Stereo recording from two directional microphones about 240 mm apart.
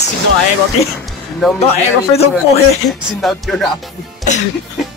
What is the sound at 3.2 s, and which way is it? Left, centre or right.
Speech, centre.